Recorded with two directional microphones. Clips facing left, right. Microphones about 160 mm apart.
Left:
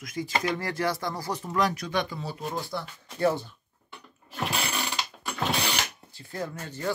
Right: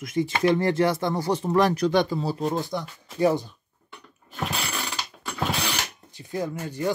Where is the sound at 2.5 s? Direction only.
20° right (ahead or behind).